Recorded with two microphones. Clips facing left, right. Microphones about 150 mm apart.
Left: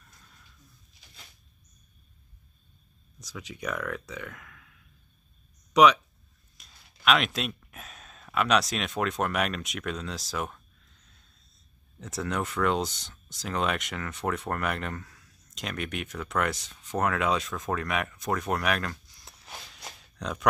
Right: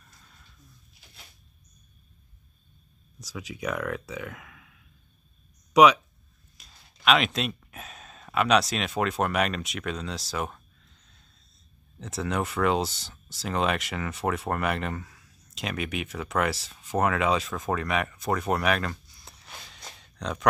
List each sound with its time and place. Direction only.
3.2 s speech: 5° right (ahead or behind)
12.0 s speech: centre (ahead or behind)
19.8 s a sound: 5° left (ahead or behind)